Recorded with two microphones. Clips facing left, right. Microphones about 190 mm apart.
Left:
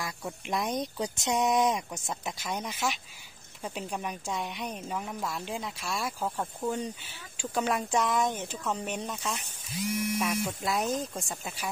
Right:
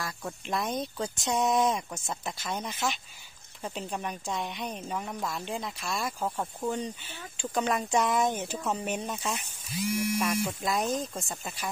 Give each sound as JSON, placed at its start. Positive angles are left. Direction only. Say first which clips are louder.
{"t": 0.5, "sound": "speech", "louder": "left 1 dB", "side_deg": 15}
{"t": 6.2, "sound": "speech", "louder": "even", "side_deg": -5}